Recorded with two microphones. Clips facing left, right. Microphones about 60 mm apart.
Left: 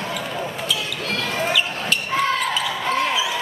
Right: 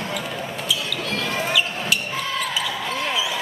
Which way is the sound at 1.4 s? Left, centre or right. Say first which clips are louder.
Left 2 dB; centre.